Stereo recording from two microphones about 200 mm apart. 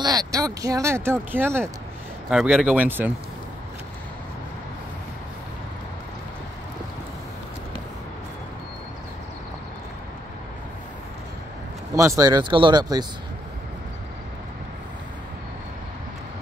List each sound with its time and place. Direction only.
0.0 s speech: 20° right (ahead or behind)
11.9 s speech: 15° right (ahead or behind)